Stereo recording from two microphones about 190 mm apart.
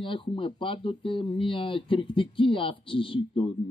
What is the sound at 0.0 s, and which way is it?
Speech, 25° left (ahead or behind).